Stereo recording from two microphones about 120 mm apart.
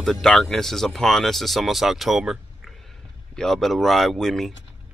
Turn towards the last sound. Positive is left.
turn(degrees=0)  # may be behind; listen again after turning